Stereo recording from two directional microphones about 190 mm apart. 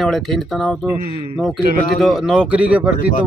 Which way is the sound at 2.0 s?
Centre (ahead or behind).